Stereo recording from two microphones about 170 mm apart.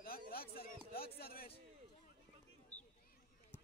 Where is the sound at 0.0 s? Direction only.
60° left (ahead or behind).